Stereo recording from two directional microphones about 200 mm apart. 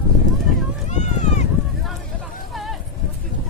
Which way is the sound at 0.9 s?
35° left (ahead or behind).